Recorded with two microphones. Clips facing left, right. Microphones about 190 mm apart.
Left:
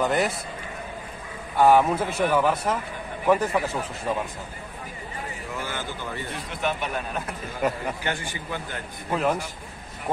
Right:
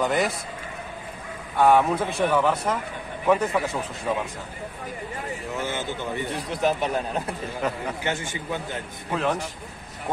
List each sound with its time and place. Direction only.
0.0 s speech: centre (ahead or behind)
1.6 s speech: 5° left (ahead or behind)
5.7 s a man's voice: 20° right (ahead or behind)
6.3 s speech: 35° right (ahead or behind)
8.0 s a man's voice: 20° right (ahead or behind)
9.1 s speech: 5° left (ahead or behind)